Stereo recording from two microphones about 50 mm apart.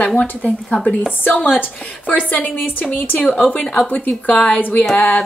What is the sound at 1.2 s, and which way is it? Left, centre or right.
A woman's voice, left.